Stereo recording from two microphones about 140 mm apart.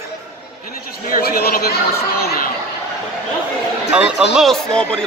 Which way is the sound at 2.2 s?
90° left.